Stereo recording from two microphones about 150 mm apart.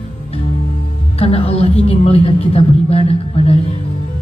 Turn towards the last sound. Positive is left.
turn(degrees=40)  # may be behind; listen again after turning